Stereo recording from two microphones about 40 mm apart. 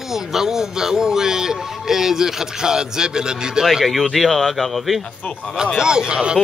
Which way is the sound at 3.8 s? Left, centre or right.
Centre.